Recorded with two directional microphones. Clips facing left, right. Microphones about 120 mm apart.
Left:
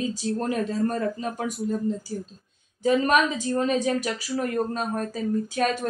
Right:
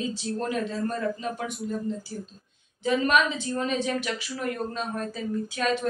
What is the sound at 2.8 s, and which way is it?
A woman's voice, 40° left (ahead or behind).